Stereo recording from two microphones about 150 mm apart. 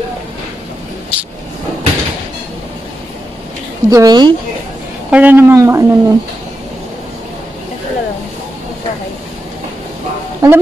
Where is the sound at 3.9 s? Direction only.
25° right (ahead or behind).